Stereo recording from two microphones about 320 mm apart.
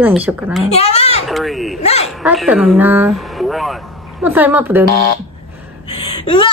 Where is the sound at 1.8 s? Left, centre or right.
Centre.